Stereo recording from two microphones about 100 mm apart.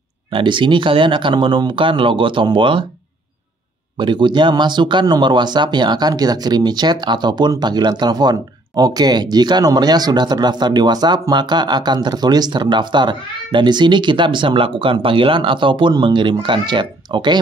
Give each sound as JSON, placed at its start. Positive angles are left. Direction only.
{"t": 0.3, "sound": "speech", "side_deg": -55}
{"t": 4.0, "sound": "speech", "side_deg": -50}